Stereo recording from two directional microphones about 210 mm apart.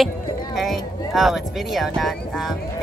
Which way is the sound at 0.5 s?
Centre (ahead or behind).